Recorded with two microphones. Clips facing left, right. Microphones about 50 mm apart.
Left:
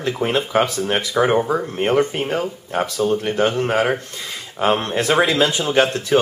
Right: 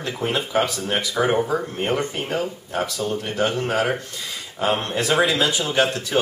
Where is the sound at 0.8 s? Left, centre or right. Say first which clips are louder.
Left 3 dB; centre.